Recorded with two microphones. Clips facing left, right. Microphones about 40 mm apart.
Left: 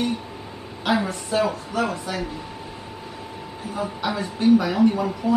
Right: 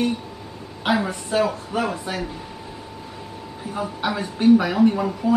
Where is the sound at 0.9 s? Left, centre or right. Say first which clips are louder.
Right 1 dB; right.